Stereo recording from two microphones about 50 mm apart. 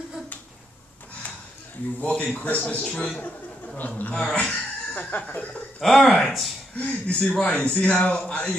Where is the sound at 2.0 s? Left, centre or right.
Left.